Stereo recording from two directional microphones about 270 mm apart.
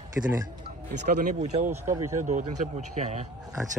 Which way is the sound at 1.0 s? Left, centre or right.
Right.